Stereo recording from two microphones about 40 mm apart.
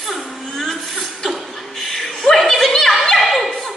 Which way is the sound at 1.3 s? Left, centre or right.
Centre.